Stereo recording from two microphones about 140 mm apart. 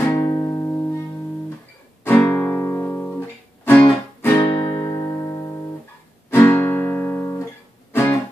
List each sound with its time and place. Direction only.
0.0 s music: 25° left (ahead or behind)
2.0 s guitar: 15° left (ahead or behind)